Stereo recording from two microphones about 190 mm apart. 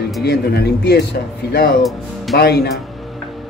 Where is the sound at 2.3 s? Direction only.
60° left (ahead or behind).